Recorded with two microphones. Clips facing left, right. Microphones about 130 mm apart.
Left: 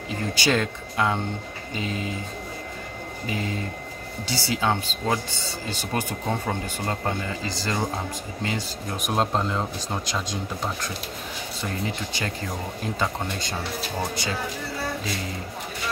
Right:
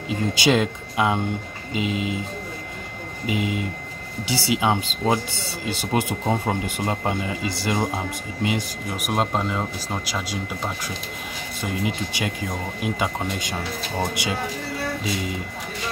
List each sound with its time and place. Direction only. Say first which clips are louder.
0.4 s speech: right 4 dB; 20° right (ahead or behind)
3.3 s speech: right 5 dB; 15° right (ahead or behind)
9.0 s speech: right 1 dB; 5° right (ahead or behind)
11.6 s speech: right 4 dB; 15° right (ahead or behind)